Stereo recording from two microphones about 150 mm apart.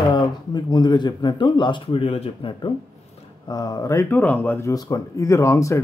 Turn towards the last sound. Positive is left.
turn(degrees=20)  # may be behind; listen again after turning